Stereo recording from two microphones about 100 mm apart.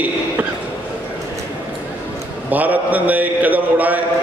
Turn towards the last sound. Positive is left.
turn(degrees=-15)  # may be behind; listen again after turning